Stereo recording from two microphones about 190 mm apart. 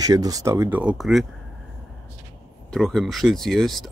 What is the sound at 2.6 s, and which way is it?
Speech, centre (ahead or behind).